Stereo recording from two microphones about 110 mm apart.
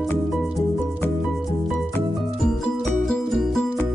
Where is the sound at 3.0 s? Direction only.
5° left (ahead or behind).